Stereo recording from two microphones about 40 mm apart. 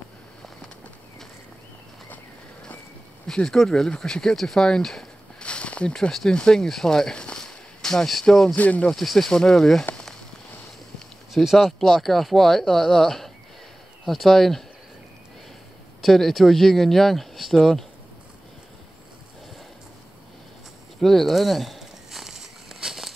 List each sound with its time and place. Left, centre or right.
3.4 s speech: centre
5.4 s a sound: left
6.3 s speech: centre
7.3 s a sound: centre
8.5 s speech: left
8.9 s speech: centre
9.3 s speech: centre
11.4 s speech: centre
11.8 s speech: centre
16.0 s speech: centre
21.0 s walk: centre